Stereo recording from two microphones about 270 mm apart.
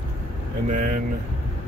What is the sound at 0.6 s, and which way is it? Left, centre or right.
Speech, right.